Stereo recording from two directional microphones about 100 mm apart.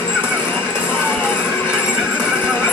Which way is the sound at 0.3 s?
20° left (ahead or behind).